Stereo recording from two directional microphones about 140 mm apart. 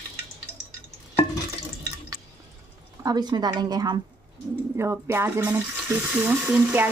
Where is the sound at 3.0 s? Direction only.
30° right (ahead or behind).